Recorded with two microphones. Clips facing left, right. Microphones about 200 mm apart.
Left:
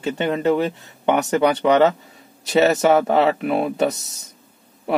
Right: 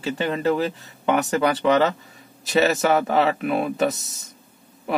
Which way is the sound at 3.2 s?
Centre (ahead or behind).